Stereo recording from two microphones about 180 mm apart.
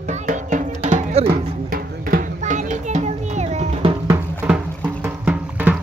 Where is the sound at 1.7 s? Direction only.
55° right (ahead or behind); by 3.9 s 40° right (ahead or behind).